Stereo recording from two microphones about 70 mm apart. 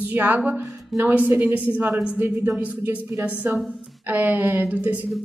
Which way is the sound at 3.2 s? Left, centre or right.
Right.